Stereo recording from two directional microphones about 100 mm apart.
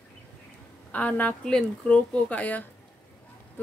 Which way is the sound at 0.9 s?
15° left (ahead or behind).